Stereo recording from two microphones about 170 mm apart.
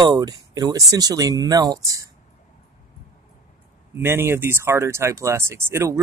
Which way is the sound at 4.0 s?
15° right (ahead or behind).